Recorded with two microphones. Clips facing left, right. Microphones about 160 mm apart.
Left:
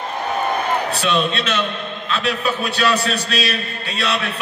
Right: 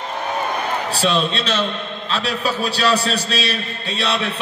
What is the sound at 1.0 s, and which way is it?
A man's voice, 30° right (ahead or behind).